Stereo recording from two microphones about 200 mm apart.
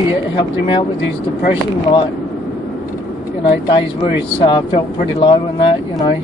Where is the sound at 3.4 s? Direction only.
25° left (ahead or behind).